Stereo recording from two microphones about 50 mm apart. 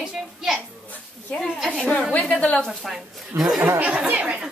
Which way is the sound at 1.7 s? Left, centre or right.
Left.